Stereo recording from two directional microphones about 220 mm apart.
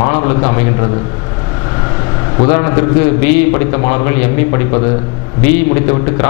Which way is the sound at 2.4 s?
10° left (ahead or behind).